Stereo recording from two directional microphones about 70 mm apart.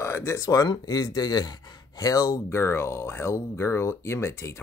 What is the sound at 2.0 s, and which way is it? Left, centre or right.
Speech, left.